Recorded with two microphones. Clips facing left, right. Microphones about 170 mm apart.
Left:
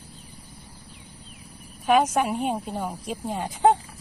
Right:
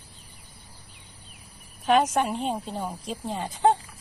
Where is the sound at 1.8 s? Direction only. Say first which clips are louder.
Left 1 dB; 5° left (ahead or behind).